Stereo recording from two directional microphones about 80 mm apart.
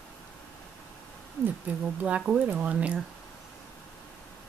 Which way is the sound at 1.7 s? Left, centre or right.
Centre.